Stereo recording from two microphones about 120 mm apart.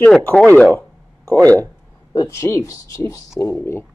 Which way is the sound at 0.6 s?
15° left (ahead or behind).